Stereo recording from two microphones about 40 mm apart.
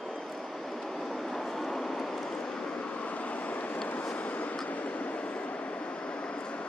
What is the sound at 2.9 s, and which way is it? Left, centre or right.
Vehicle, left.